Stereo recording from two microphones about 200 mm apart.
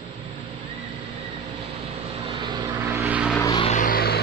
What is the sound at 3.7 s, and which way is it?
Music, 40° left (ahead or behind).